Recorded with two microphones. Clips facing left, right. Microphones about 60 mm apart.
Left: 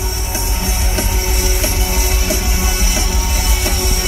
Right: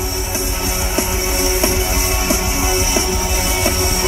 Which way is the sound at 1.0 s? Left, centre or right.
Right.